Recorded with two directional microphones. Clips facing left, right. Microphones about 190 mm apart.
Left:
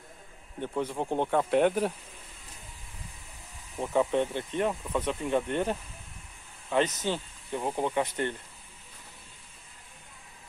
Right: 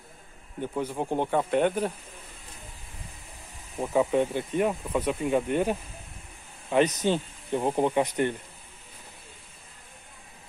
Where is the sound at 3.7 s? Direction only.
10° right (ahead or behind).